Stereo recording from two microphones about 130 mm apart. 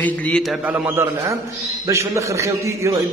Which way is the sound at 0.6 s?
15° right (ahead or behind).